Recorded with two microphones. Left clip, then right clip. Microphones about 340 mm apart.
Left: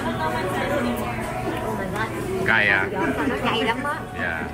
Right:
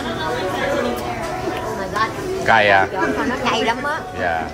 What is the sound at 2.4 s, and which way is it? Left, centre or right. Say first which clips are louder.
Speech: right 6 dB; centre.